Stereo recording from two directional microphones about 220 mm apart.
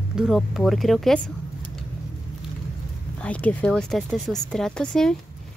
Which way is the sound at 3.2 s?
5° left (ahead or behind).